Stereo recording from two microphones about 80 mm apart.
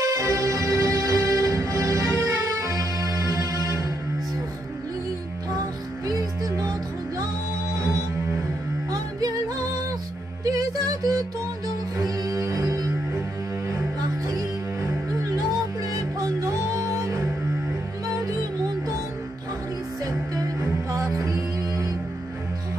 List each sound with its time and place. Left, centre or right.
0.0 s music: right
7.7 s music: right
10.5 s music: right
20.9 s music: right